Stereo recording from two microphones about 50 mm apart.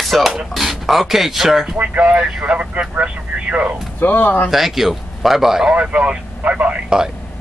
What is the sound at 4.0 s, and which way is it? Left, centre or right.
Speech, left.